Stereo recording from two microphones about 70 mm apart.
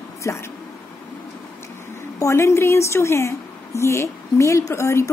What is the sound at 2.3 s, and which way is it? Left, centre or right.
A woman's voice, left.